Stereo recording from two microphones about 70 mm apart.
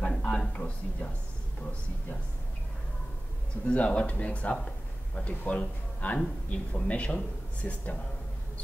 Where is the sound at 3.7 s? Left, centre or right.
Centre.